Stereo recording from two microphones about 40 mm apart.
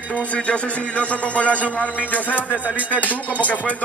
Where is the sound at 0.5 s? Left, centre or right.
Left.